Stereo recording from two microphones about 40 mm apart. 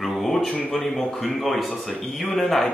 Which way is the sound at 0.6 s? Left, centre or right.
Left.